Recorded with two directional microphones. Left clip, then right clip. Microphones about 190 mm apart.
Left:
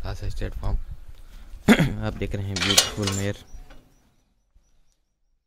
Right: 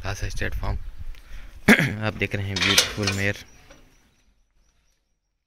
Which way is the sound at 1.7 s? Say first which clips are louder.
Right 3 dB; 10° left (ahead or behind).